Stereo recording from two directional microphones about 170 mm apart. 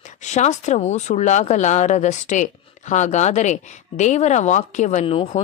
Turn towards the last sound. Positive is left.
turn(degrees=40)  # may be behind; listen again after turning